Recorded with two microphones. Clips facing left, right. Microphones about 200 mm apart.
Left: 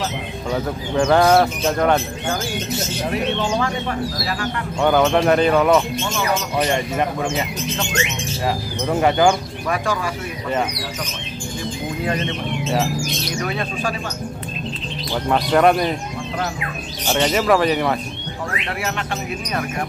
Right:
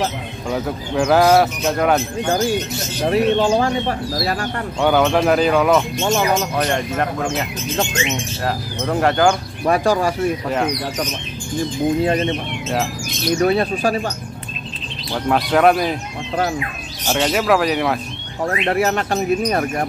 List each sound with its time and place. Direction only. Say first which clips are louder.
0.5 s speech: right 1 dB; 5° right (ahead or behind)
3.1 s speech: right 7 dB; 35° right (ahead or behind)
4.7 s speech: even; centre (ahead or behind)
8.5 s speech: even; 5° left (ahead or behind)
9.7 s speech: right 6 dB; 40° right (ahead or behind)
12.0 s speech: right 5 dB; 30° right (ahead or behind)
13.4 s speech: right 9 dB; 35° right (ahead or behind)
15.2 s speech: right 1 dB; centre (ahead or behind)
17.1 s speech: even; centre (ahead or behind)
18.4 s speech: right 9 dB; 45° right (ahead or behind)